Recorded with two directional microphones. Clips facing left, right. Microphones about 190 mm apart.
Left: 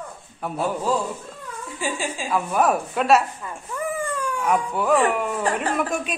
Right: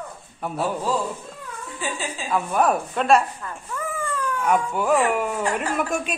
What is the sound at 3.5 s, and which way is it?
Speech, 15° left (ahead or behind).